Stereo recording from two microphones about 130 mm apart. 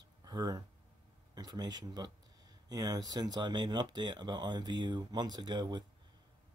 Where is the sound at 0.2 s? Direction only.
30° right (ahead or behind).